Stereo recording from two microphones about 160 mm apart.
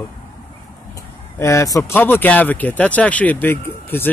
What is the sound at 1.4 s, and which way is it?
Speech, 20° left (ahead or behind).